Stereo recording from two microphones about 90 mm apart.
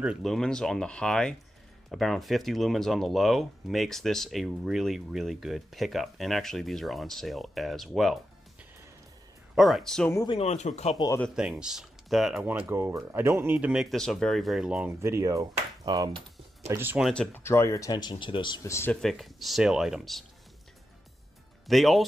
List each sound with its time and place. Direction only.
0.2 s speech: 5° left (ahead or behind)
9.6 s speech: centre (ahead or behind)
11.0 s speech: 50° left (ahead or behind)
11.3 s speech: 10° right (ahead or behind)
12.4 s speech: 25° right (ahead or behind)
13.6 s speech: 10° right (ahead or behind)
13.8 s speech: 5° left (ahead or behind)
14.9 s speech: 30° right (ahead or behind)
16.6 s speech: 30° right (ahead or behind)
17.3 s speech: 30° left (ahead or behind)
17.9 s speech: 60° left (ahead or behind)
18.6 s speech: 30° left (ahead or behind)
18.9 s speech: centre (ahead or behind)
21.6 s speech: centre (ahead or behind)